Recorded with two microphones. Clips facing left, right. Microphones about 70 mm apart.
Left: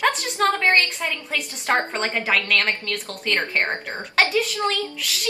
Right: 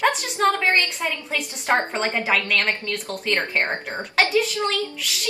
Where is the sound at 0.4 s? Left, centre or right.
Centre.